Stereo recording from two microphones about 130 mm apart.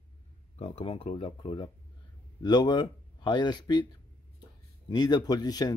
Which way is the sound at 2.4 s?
35° left (ahead or behind).